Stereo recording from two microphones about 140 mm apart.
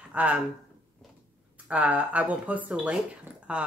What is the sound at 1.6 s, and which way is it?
Speech, 10° right (ahead or behind).